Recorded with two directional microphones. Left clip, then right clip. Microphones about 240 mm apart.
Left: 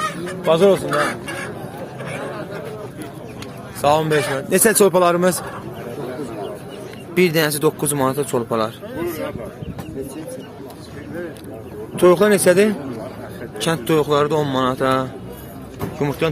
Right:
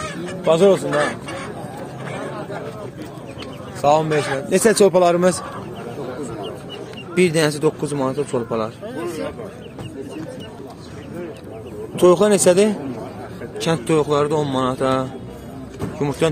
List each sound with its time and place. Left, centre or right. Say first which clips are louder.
0.5 s speech: even; centre
0.8 s speech: even; left
3.8 s a man's voice: even; centre
7.2 s speech: even; centre
12.0 s speech: even; centre
16.2 s speech: right 2 dB; centre